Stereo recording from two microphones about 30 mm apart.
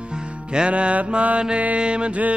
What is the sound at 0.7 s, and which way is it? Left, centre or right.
Mantra, right.